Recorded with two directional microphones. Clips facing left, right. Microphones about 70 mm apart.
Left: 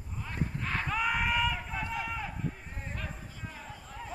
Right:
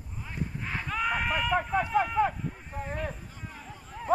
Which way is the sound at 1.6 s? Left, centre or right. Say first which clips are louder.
Right 10 dB; right.